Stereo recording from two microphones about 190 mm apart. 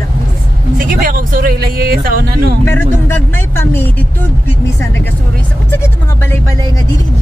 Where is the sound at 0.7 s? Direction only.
45° right (ahead or behind).